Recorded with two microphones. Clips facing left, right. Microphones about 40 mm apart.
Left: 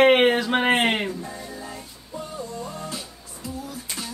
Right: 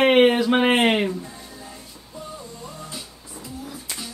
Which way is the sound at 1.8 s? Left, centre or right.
Left.